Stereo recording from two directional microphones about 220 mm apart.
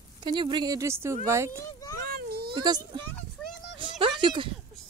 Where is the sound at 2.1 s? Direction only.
45° right (ahead or behind).